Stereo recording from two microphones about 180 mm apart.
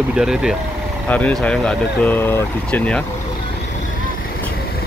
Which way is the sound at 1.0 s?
10° left (ahead or behind).